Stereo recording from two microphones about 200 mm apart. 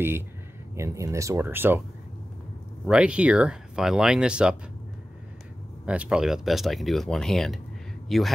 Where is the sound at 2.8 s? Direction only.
5° right (ahead or behind).